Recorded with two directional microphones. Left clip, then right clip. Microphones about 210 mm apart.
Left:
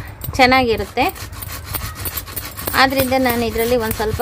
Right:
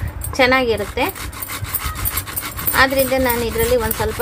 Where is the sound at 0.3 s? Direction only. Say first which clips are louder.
Left 2 dB; 45° left (ahead or behind).